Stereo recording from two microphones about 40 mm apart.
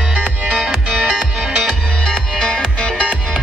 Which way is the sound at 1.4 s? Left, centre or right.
Centre.